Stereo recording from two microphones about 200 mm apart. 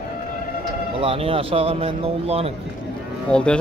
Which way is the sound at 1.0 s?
30° right (ahead or behind).